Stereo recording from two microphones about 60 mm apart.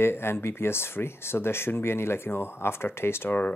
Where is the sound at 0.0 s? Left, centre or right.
Left.